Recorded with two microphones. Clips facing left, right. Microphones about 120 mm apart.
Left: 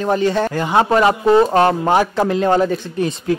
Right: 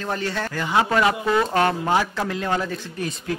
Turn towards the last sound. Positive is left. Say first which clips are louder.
# left 10 dB
turn(degrees=30)  # may be behind; listen again after turning